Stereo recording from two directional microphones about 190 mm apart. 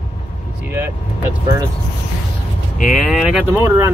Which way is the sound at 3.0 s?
5° right (ahead or behind).